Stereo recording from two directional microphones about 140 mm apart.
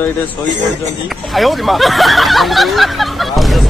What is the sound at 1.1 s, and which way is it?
Speech, centre (ahead or behind).